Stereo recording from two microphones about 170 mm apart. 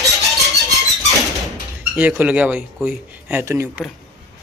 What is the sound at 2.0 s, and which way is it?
Speech, 10° right (ahead or behind).